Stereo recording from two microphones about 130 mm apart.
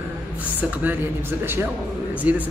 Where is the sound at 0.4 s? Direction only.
15° right (ahead or behind).